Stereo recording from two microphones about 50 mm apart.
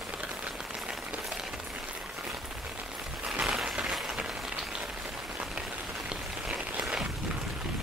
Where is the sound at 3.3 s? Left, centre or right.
Centre.